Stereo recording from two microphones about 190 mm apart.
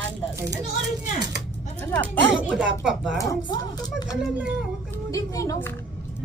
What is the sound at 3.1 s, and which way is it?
Speech, 20° left (ahead or behind).